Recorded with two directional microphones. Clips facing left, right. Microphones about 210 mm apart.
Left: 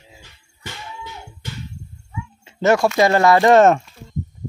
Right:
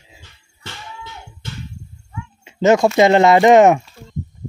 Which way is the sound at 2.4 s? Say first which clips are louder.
Right 3 dB; 20° right (ahead or behind).